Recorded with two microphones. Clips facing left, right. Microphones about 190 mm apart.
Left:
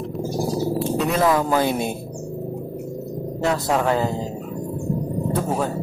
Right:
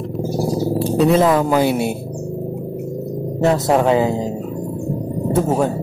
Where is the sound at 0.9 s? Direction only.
25° right (ahead or behind).